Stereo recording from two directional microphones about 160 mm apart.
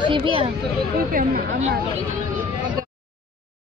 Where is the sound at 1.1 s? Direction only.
65° right (ahead or behind).